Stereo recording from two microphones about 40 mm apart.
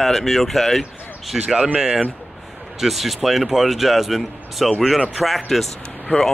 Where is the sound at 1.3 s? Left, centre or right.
Centre.